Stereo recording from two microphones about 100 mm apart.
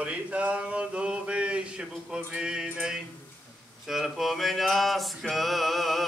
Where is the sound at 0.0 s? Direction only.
15° right (ahead or behind).